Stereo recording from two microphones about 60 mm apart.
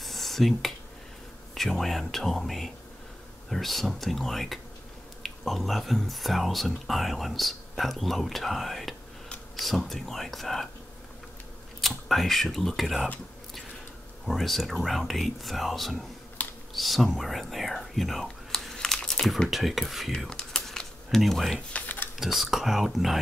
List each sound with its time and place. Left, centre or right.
0.0 s a sound: centre
1.5 s speech: centre
12.1 s speech: centre
14.2 s speech: centre
16.4 s computer keyboard: left
16.7 s whispering: centre
19.5 s speech: centre
20.2 s computer keyboard: centre
21.7 s a sound: left
22.2 s speech: centre